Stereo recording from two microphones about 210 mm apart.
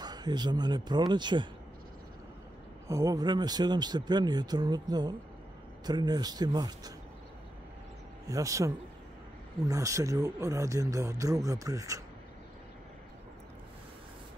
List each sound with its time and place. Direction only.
0.0 s speech: 20° right (ahead or behind)
2.9 s speech: 15° right (ahead or behind)
8.3 s speech: 15° right (ahead or behind)